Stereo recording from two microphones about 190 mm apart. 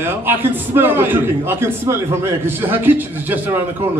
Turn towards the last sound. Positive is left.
turn(degrees=-10)  # may be behind; listen again after turning